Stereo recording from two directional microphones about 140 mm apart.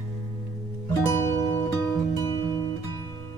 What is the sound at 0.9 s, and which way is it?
Music, 20° left (ahead or behind).